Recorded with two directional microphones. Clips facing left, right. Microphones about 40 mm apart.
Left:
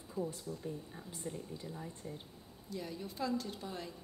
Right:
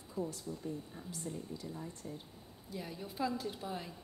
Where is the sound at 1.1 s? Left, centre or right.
Left.